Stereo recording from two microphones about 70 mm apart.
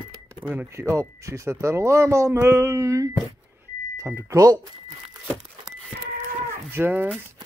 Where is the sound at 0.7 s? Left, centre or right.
Right.